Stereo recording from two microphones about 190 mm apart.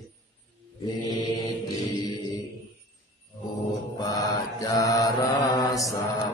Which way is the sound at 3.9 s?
20° left (ahead or behind).